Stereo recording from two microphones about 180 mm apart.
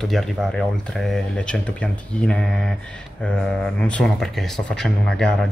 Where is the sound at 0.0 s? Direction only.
Centre (ahead or behind).